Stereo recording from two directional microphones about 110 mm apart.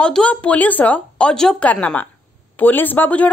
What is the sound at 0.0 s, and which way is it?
A woman's voice, 10° left (ahead or behind).